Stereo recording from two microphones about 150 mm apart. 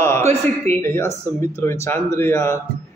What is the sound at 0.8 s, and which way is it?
Speech, 20° left (ahead or behind).